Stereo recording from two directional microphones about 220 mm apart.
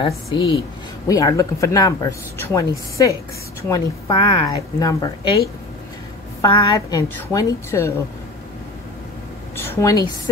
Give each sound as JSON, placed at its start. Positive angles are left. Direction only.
{"t": 0.0, "sound": "speech", "side_deg": 25}
{"t": 6.4, "sound": "speech", "side_deg": 15}
{"t": 9.6, "sound": "a woman's voice", "side_deg": 10}